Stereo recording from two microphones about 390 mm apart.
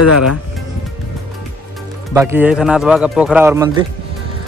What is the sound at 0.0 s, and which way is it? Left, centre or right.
Speech, left.